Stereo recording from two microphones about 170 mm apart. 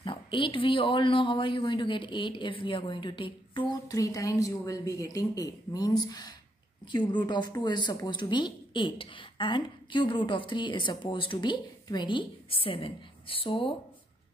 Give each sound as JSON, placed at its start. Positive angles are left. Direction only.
{"t": 0.0, "sound": "a woman's voice", "side_deg": 30}